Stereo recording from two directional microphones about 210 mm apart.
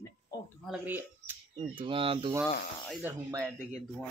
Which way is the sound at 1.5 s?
25° right (ahead or behind).